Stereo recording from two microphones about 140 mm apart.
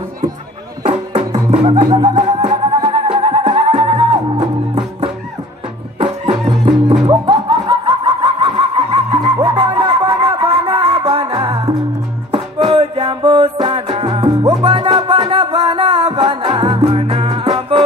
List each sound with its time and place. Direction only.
0.8 s music: 40° right (ahead or behind)
6.4 s music: 35° right (ahead or behind)
12.3 s music: 35° right (ahead or behind)